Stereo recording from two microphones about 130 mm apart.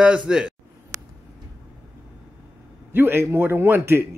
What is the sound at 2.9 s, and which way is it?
A man's voice, 15° right (ahead or behind).